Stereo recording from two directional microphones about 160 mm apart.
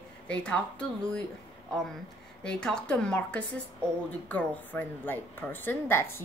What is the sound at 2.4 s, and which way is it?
A woman's voice, 5° left (ahead or behind).